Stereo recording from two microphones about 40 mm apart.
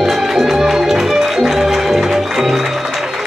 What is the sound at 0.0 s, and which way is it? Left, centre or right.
Music, centre.